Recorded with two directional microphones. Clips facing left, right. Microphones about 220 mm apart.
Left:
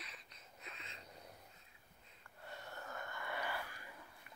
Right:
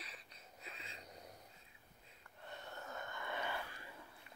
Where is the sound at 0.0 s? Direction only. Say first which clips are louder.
Right 1 dB; 30° right (ahead or behind).